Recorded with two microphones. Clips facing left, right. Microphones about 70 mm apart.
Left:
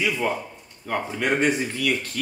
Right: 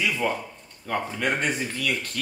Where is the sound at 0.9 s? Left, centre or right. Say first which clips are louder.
Left 2 dB; centre.